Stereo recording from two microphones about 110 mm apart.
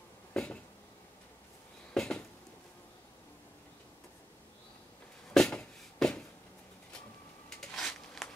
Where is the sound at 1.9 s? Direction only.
5° left (ahead or behind).